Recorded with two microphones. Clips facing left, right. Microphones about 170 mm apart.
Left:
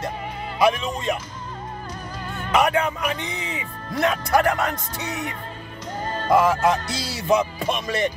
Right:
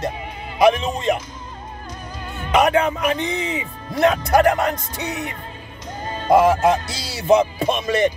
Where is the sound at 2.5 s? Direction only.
20° right (ahead or behind).